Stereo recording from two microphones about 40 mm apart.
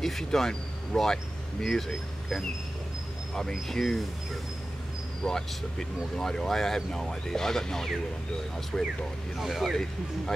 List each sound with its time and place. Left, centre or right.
0.0 s speech: centre
3.3 s speech: centre
5.2 s speech: centre
9.4 s speech: centre